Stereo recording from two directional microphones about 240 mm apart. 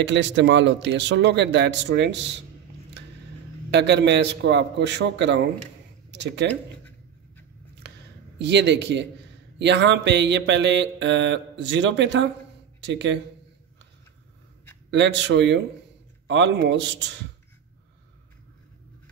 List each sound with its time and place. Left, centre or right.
0.0 s mantra: right
3.7 s mantra: right
8.4 s mantra: right
14.9 s mantra: right